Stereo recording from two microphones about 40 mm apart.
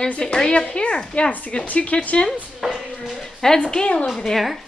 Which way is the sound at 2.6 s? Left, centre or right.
Centre.